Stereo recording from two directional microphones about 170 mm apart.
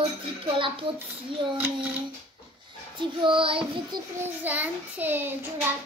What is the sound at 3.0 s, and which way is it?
Child singing, 30° right (ahead or behind).